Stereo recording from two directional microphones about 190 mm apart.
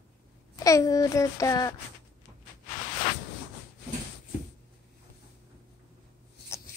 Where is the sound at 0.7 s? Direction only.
20° left (ahead or behind).